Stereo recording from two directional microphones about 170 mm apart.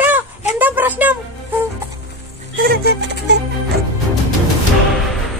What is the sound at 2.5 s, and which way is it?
Music, 65° right (ahead or behind).